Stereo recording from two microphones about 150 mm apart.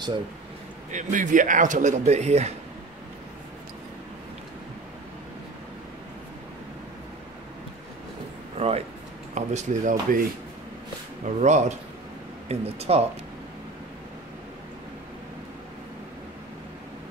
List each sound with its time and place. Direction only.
0.9 s speech: 60° right (ahead or behind)
8.5 s speech: 45° right (ahead or behind)
11.2 s speech: 50° right (ahead or behind)